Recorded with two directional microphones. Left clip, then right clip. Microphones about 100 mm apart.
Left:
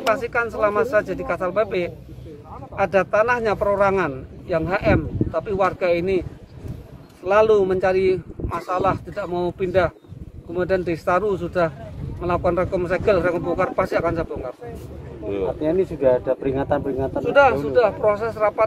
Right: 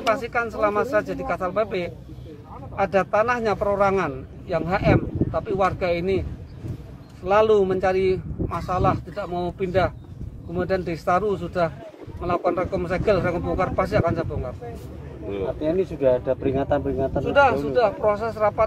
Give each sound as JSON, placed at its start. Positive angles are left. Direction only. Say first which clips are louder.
{"t": 0.1, "sound": "a man's voice", "louder": "left 2 dB", "side_deg": 25}
{"t": 7.2, "sound": "a man's voice", "louder": "left 2 dB", "side_deg": 20}
{"t": 15.2, "sound": "speech", "louder": "left 3 dB", "side_deg": 40}
{"t": 17.1, "sound": "a man's voice", "louder": "left 3 dB", "side_deg": 25}